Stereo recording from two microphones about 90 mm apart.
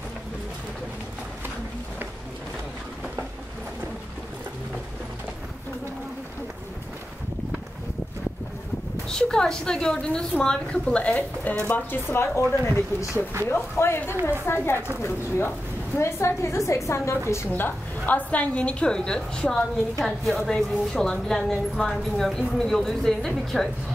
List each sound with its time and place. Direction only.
9.1 s a woman's voice: 10° left (ahead or behind)